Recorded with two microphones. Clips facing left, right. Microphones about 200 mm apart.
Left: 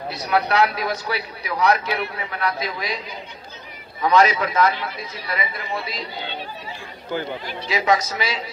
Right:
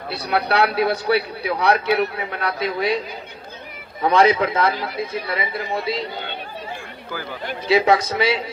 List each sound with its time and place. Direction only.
0.1 s a man's voice: 30° right (ahead or behind)
4.0 s a man's voice: 30° right (ahead or behind)
5.0 s speech: 55° right (ahead or behind)
5.3 s a man's voice: 30° right (ahead or behind)
7.1 s speech: 25° left (ahead or behind)
7.7 s a man's voice: 30° right (ahead or behind)